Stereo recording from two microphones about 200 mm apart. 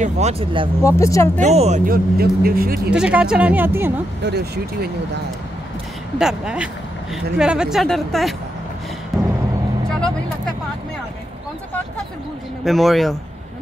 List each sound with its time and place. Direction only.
0.0 s speech: 30° right (ahead or behind)
0.8 s speech: 15° left (ahead or behind)
1.4 s speech: 35° right (ahead or behind)
2.1 s speech: 50° right (ahead or behind)
2.9 s speech: 5° right (ahead or behind)
6.1 s speech: 5° right (ahead or behind)
9.1 s vehicle: centre (ahead or behind)
12.6 s speech: centre (ahead or behind)